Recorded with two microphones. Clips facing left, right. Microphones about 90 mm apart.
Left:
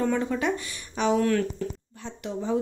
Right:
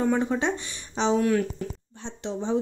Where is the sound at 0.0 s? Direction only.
20° right (ahead or behind).